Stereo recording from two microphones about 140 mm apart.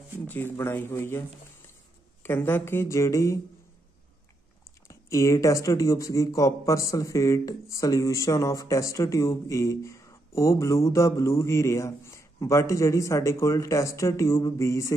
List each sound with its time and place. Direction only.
0.3 s a woman's voice: 15° left (ahead or behind)
2.2 s a woman's voice: 15° left (ahead or behind)
4.8 s speech: 20° left (ahead or behind)